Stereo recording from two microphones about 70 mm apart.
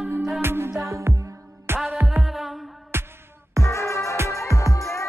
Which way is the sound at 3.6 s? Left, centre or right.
Left.